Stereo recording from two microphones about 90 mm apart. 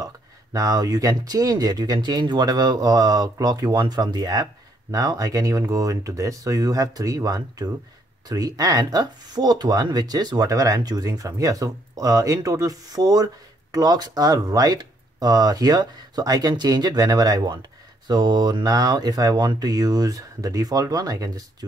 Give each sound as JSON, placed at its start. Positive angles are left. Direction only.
{"t": 0.0, "sound": "speech", "side_deg": -40}